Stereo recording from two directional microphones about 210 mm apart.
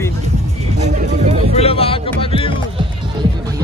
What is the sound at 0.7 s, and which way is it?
Music, 30° right (ahead or behind).